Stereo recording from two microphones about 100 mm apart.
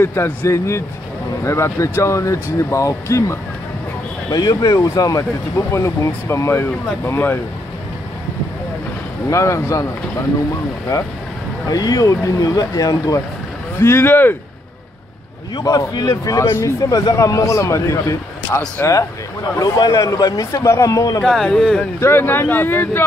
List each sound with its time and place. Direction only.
0.0 s speech: 25° left (ahead or behind)
4.3 s a man's voice: 40° left (ahead or behind); by 7.3 s 25° left (ahead or behind)
9.3 s a man's voice: 30° left (ahead or behind)
11.7 s a man's voice: 40° left (ahead or behind)
13.7 s speech: 20° left (ahead or behind)
15.5 s a man's voice: 40° left (ahead or behind); by 18.7 s 25° left (ahead or behind)
19.6 s a man's voice: 40° left (ahead or behind)
21.2 s speech: centre (ahead or behind)
22.0 s speech: 20° left (ahead or behind)